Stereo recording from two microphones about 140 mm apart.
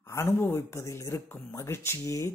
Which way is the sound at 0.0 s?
20° left (ahead or behind).